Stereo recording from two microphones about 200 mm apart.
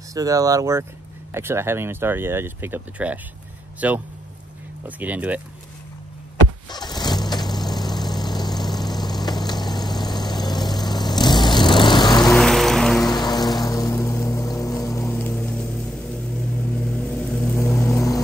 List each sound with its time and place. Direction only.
0.1 s speech: 15° right (ahead or behind)
6.7 s vehicle: 20° left (ahead or behind)
12.3 s music: 5° left (ahead or behind)
13.1 s music: 20° left (ahead or behind)
13.7 s vehicle: 15° left (ahead or behind)
17.2 s vehicle: 5° left (ahead or behind)